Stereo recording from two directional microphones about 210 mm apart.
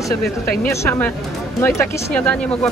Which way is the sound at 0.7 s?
10° left (ahead or behind).